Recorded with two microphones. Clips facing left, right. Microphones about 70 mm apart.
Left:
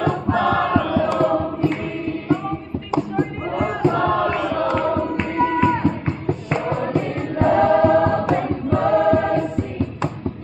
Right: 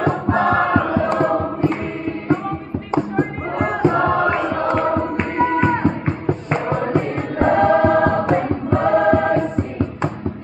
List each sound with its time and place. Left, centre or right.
0.0 s music: right
0.4 s music: right
1.2 s choir: right
2.9 s music: right
3.6 s choir: right
4.5 s music: right
5.8 s music: right
7.5 s choir: right